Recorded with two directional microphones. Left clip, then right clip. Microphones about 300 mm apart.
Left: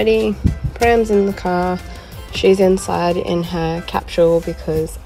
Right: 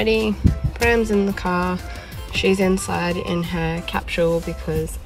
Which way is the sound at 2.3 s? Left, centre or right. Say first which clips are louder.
Left 6 dB; right.